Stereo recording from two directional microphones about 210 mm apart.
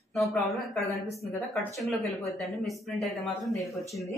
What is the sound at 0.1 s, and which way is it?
Speech, centre (ahead or behind).